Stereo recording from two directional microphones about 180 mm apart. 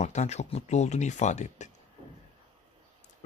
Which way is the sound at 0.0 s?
40° left (ahead or behind).